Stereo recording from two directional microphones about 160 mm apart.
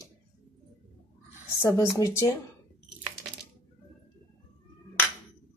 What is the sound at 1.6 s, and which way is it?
Speech, 20° left (ahead or behind).